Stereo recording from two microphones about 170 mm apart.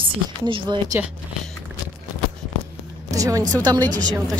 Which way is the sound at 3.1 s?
20° right (ahead or behind).